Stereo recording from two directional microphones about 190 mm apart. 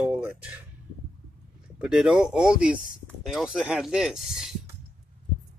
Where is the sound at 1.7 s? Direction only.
5° right (ahead or behind).